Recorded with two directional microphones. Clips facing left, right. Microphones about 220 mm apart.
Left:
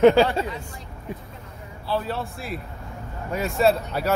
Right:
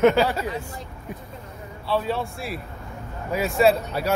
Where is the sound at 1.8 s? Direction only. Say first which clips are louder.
Right 2 dB; centre (ahead or behind).